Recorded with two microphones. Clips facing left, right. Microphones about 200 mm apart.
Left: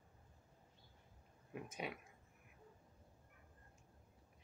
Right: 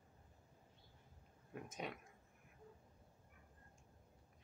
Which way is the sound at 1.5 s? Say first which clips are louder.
Left 1 dB; 5° left (ahead or behind).